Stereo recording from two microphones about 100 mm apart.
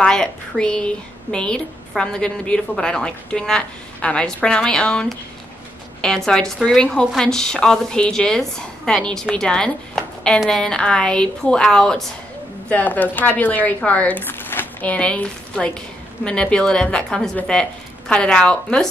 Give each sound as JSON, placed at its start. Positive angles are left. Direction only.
{"t": 0.0, "sound": "speech", "side_deg": 10}